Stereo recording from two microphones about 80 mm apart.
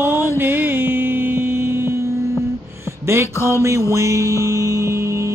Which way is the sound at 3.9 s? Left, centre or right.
Right.